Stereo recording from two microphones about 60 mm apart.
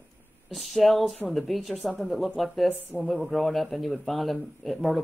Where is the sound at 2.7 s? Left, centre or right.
Right.